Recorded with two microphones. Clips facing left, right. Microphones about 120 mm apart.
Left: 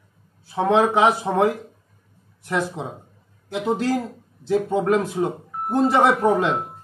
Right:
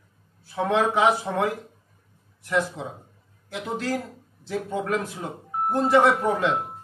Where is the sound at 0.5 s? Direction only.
25° left (ahead or behind).